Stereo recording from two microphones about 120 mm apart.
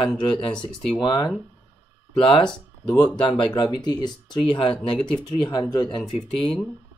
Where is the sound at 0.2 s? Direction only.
40° left (ahead or behind).